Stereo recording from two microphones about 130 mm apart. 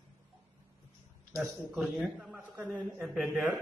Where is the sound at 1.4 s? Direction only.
15° right (ahead or behind).